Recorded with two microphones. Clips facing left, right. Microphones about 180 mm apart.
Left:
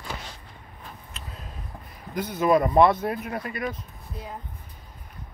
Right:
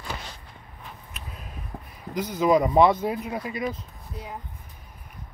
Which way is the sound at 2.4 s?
15° right (ahead or behind).